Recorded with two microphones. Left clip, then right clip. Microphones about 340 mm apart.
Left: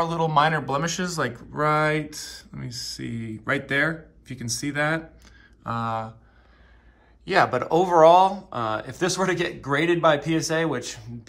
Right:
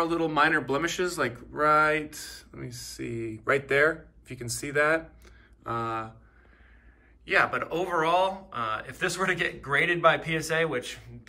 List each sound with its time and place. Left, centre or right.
0.0 s speech: centre
2.6 s speech: right
3.3 s speech: centre
7.2 s speech: centre